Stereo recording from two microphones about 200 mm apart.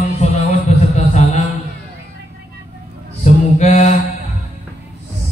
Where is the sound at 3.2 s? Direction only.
35° left (ahead or behind).